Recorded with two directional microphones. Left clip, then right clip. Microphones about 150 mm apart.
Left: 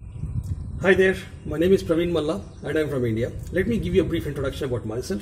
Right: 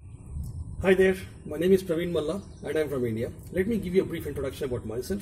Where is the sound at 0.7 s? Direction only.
5° right (ahead or behind).